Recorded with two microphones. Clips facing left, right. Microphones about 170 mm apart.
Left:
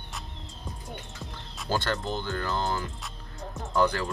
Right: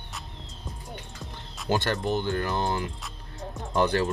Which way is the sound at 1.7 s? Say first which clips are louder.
Right 3 dB; 20° right (ahead or behind).